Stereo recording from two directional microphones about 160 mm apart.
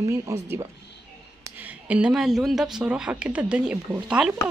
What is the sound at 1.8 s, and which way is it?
A woman's voice, 5° right (ahead or behind).